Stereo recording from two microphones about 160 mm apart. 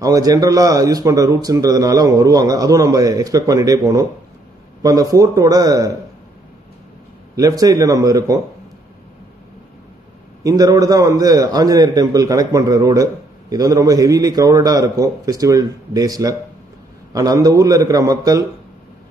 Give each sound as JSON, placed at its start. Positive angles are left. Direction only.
{"t": 0.0, "sound": "a man's voice", "side_deg": -20}
{"t": 7.3, "sound": "a man's voice", "side_deg": -20}
{"t": 10.4, "sound": "a man's voice", "side_deg": -20}